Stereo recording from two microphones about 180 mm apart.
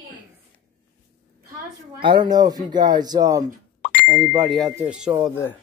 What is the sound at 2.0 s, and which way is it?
Speech, 25° right (ahead or behind).